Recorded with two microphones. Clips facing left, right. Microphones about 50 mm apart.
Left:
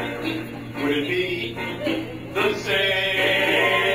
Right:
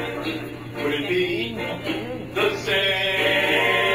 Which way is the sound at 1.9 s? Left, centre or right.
Left.